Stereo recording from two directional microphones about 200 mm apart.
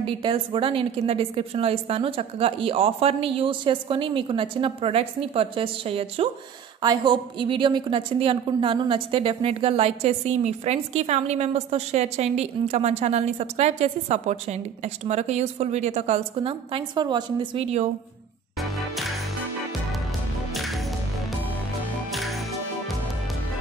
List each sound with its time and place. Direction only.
0.0 s a woman's voice: 25° right (ahead or behind)
18.6 s music: centre (ahead or behind)